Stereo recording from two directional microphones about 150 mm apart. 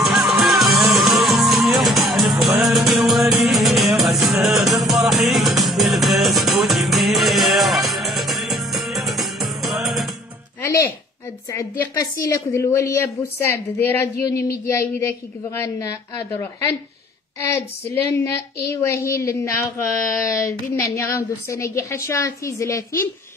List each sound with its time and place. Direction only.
0.0 s music: centre (ahead or behind)
10.6 s a sound: 20° left (ahead or behind)
11.8 s a woman's voice: 20° left (ahead or behind)